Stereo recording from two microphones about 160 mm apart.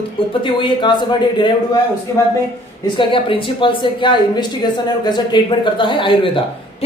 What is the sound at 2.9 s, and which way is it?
Speech, 30° left (ahead or behind).